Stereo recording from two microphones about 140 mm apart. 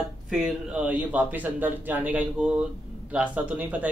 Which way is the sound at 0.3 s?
5° right (ahead or behind).